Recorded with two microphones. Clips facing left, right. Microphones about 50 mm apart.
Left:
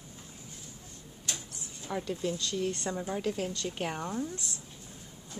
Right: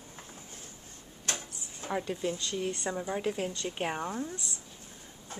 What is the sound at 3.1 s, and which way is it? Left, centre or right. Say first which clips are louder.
A woman's voice: even; centre.